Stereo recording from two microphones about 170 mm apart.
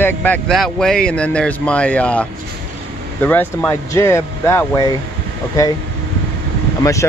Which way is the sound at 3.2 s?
10° left (ahead or behind).